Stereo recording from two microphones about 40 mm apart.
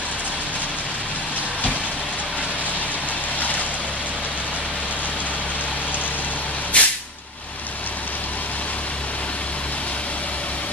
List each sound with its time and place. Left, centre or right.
6.7 s vehicle: left